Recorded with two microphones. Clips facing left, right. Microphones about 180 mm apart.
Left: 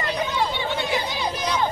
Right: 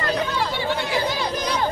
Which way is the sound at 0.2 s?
15° left (ahead or behind).